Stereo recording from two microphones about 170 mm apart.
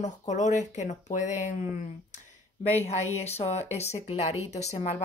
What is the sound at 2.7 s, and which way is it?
Speech, 40° left (ahead or behind).